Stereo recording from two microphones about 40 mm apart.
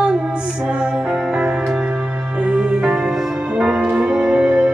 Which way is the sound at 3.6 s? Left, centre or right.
Right.